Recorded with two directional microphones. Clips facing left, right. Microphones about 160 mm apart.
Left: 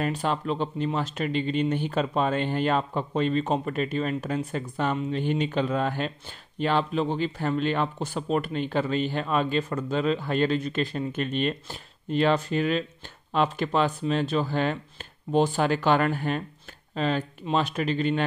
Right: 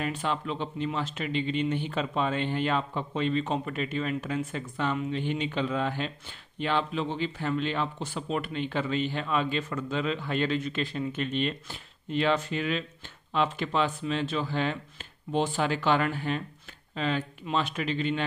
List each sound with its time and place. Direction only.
0.0 s speech: 40° left (ahead or behind)